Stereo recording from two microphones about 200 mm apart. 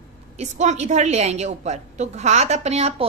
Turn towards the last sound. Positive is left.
turn(degrees=-30)  # may be behind; listen again after turning